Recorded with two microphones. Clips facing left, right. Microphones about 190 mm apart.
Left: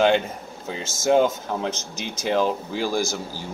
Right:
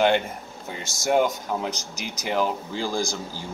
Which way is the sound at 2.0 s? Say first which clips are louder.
Left 3 dB; 25° left (ahead or behind).